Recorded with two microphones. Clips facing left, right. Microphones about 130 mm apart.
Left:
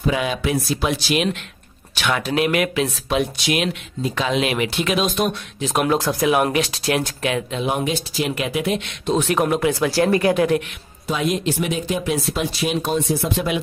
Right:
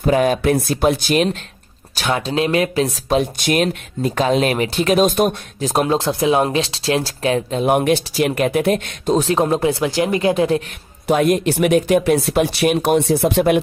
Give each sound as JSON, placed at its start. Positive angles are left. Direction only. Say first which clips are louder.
{"t": 0.0, "sound": "speech", "louder": "right 6 dB", "side_deg": -45}
{"t": 3.3, "sound": "speech", "louder": "right 4 dB", "side_deg": -45}
{"t": 7.6, "sound": "speech", "louder": "right 9 dB", "side_deg": -55}
{"t": 11.1, "sound": "speech", "louder": "right 6 dB", "side_deg": -55}